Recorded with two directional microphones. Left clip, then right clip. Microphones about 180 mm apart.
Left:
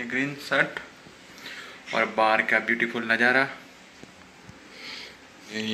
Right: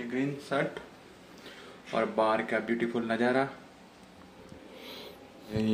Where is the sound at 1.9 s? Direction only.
10° right (ahead or behind).